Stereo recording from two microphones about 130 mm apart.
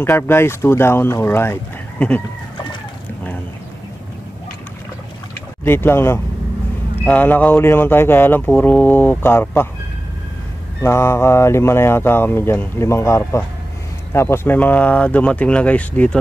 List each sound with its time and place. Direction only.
0.0 s speech: 20° left (ahead or behind)
5.6 s speech: 15° left (ahead or behind)
10.8 s speech: 20° left (ahead or behind)